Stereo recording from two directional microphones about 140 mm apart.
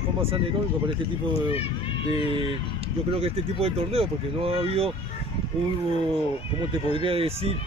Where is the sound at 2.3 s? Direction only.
40° right (ahead or behind).